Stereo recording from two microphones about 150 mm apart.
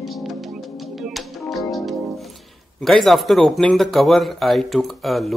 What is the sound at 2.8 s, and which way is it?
Speech, centre (ahead or behind).